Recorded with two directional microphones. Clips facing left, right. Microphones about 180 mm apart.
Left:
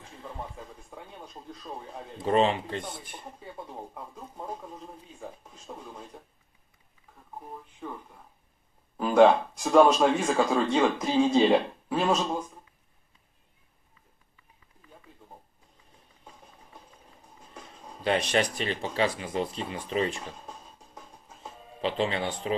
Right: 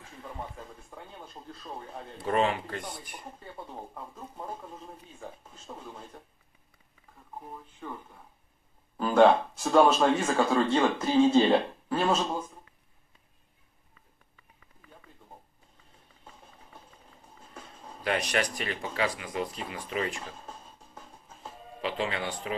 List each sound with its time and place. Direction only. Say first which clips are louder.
0.8 s speech: left 1 dB; 5° left (ahead or behind); by 2.8 s 25° left (ahead or behind)
3.3 s speech: left 2 dB; 10° left (ahead or behind)
7.8 s speech: left 1 dB; 5° left (ahead or behind)
18.0 s speech: left 3 dB; 25° left (ahead or behind)
21.8 s speech: left 3 dB; 25° left (ahead or behind)